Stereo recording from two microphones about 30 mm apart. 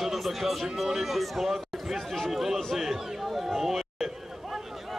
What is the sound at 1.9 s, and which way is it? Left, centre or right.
Speech, centre.